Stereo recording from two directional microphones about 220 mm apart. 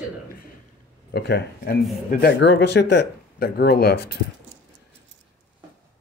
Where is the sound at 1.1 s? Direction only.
45° left (ahead or behind).